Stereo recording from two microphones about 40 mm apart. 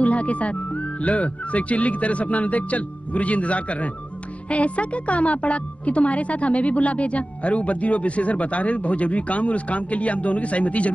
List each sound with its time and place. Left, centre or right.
0.0 s speech: left